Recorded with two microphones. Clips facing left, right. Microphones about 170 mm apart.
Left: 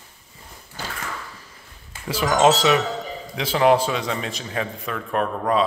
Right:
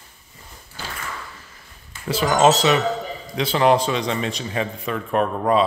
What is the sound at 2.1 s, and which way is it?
A man's voice, 5° left (ahead or behind).